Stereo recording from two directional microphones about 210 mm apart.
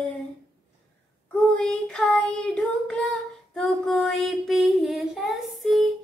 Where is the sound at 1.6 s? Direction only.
5° left (ahead or behind).